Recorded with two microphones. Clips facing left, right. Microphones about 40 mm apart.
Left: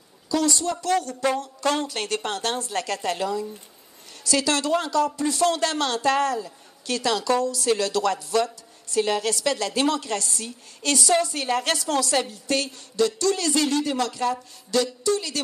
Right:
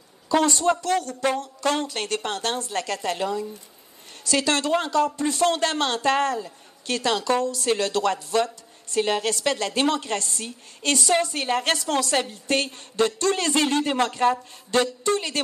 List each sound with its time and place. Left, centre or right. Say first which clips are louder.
0.3 s a woman's voice: right 3 dB; right